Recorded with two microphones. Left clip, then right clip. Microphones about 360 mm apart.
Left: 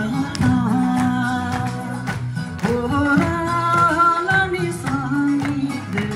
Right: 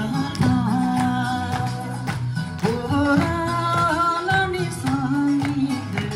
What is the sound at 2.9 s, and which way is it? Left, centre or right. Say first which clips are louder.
Music: left 1 dB; right.